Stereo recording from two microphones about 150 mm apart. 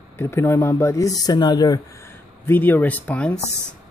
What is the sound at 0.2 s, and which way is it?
Speech, 15° left (ahead or behind).